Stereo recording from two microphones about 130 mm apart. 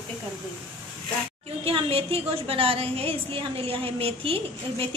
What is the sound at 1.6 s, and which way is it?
A woman's voice, 45° right (ahead or behind).